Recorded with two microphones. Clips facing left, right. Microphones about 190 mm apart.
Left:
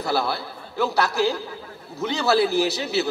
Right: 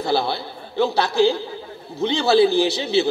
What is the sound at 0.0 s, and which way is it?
A man's voice, 30° right (ahead or behind).